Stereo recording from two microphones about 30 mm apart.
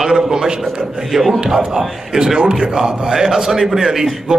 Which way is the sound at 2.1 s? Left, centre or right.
Right.